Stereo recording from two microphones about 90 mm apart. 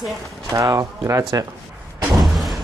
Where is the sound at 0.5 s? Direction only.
35° right (ahead or behind).